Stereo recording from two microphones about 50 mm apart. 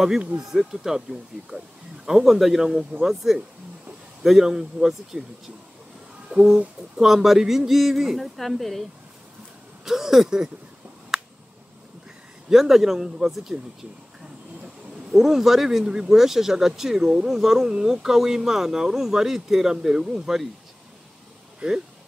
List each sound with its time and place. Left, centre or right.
0.4 s speech: centre
1.5 s speech: right
2.0 s speech: centre
6.3 s speech: centre
9.8 s speech: centre
12.4 s speech: centre
15.0 s speech: centre
21.6 s speech: centre